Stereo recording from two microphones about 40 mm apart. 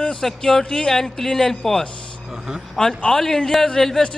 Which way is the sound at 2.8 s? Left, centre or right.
Left.